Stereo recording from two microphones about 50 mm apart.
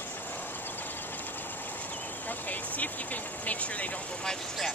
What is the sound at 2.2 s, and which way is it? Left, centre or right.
Speech, left.